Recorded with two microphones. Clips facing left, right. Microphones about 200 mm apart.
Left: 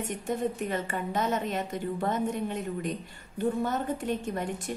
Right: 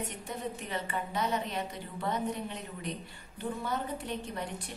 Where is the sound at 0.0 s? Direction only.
45° left (ahead or behind).